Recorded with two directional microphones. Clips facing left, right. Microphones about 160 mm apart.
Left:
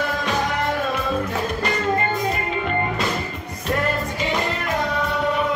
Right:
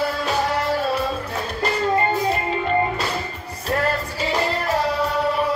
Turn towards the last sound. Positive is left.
turn(degrees=-35)  # may be behind; listen again after turning